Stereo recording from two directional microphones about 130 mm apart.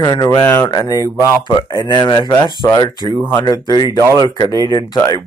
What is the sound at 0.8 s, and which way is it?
Speech, 30° left (ahead or behind).